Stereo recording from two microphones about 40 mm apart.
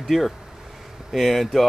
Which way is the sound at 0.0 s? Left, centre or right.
Centre.